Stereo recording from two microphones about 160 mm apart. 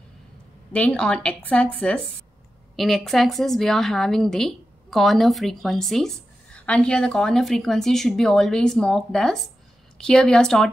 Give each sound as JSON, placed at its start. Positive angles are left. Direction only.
{"t": 0.7, "sound": "a woman's voice", "side_deg": 5}